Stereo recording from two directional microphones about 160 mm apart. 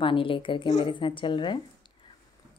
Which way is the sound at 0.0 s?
35° left (ahead or behind).